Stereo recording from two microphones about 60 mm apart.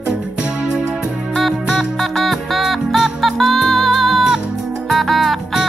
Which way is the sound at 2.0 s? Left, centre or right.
Centre.